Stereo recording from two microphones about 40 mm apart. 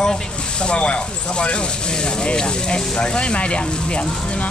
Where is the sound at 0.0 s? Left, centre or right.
Left.